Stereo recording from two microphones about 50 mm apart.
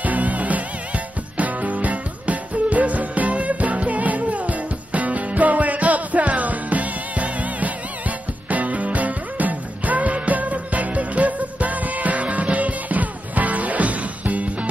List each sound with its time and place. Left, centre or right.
0.0 s music: right